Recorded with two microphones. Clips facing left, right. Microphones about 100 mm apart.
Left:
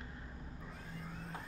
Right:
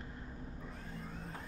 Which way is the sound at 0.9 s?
Centre (ahead or behind).